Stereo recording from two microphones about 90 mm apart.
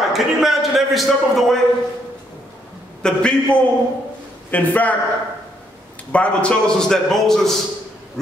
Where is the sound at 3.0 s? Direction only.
10° left (ahead or behind).